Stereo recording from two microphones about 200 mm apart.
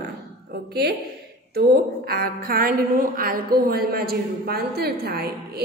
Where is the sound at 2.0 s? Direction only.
50° right (ahead or behind).